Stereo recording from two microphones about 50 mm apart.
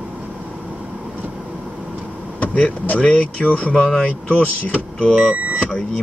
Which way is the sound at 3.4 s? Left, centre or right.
Left.